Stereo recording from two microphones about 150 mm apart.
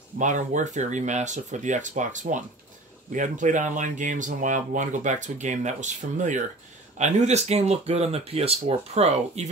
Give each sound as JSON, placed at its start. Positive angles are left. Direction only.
{"t": 0.2, "sound": "speech", "side_deg": -55}